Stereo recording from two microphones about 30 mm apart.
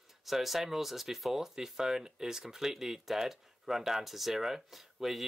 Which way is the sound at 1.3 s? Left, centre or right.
Centre.